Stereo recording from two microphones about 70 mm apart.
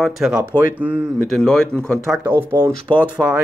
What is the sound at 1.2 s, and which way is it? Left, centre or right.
Speech, centre.